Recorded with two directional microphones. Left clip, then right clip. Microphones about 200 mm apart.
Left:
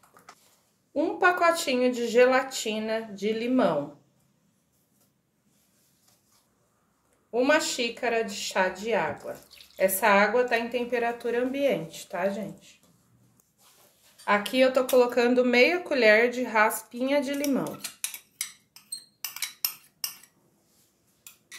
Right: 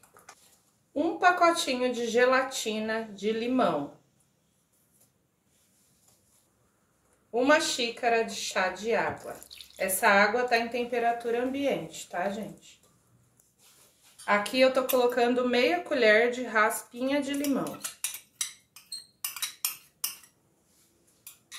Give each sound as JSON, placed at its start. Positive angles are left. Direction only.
{"t": 0.9, "sound": "a woman's voice", "side_deg": 40}
{"t": 7.2, "sound": "a woman's voice", "side_deg": 40}
{"t": 14.2, "sound": "a woman's voice", "side_deg": 40}